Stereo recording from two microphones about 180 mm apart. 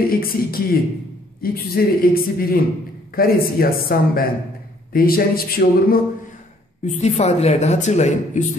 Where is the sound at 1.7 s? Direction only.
55° left (ahead or behind).